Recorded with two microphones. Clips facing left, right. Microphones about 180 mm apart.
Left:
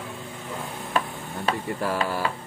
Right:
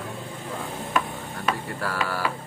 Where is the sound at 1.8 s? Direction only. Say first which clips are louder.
Left 2 dB; 20° left (ahead or behind).